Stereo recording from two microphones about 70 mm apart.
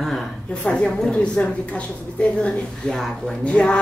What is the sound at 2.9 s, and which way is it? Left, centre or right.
Speech, centre.